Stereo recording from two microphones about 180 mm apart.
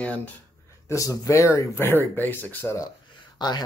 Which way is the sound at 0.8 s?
20° left (ahead or behind).